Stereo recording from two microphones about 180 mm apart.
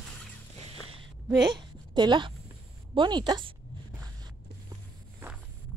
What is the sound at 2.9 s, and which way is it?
Speech, 25° right (ahead or behind).